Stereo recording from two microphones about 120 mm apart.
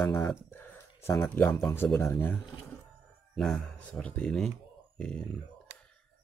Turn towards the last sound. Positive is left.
turn(degrees=5)  # may be behind; listen again after turning